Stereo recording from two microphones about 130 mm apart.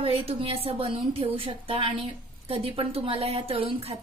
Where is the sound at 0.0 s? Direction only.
45° right (ahead or behind).